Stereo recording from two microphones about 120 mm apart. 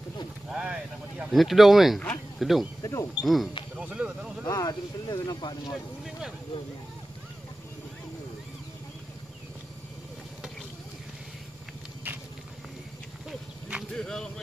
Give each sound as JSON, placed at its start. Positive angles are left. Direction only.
{"t": 0.5, "sound": "speech", "side_deg": -5}
{"t": 2.0, "sound": "a sound", "side_deg": 10}
{"t": 2.4, "sound": "speech", "side_deg": 0}
{"t": 2.8, "sound": "speech", "side_deg": 30}
{"t": 3.2, "sound": "speech", "side_deg": 0}
{"t": 4.5, "sound": "speech", "side_deg": 35}
{"t": 5.7, "sound": "speech", "side_deg": 0}
{"t": 13.3, "sound": "clip-clop", "side_deg": -5}
{"t": 13.9, "sound": "speech", "side_deg": 5}